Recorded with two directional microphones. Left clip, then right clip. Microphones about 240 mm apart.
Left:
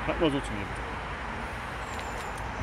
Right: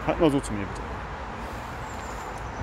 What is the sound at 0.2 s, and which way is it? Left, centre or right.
Speech, right.